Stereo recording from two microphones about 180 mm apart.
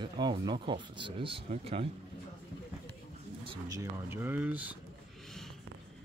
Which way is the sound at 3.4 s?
20° right (ahead or behind).